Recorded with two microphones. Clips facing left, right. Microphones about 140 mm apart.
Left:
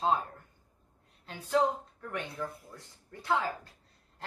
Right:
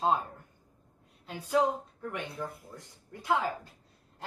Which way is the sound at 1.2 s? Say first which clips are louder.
Right 1 dB; 10° right (ahead or behind).